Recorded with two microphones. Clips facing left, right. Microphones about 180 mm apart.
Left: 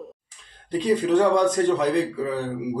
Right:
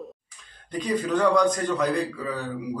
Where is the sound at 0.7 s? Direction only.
25° left (ahead or behind).